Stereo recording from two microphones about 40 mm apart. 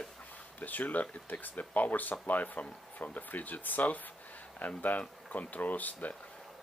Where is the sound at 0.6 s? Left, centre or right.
Left.